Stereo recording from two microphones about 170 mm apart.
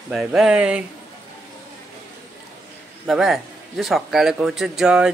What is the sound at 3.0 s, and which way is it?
Speech, centre (ahead or behind).